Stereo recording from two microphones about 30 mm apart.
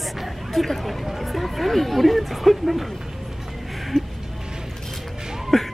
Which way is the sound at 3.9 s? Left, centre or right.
Centre.